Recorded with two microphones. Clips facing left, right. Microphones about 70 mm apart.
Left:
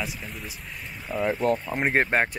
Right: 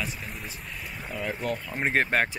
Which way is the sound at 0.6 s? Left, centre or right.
Centre.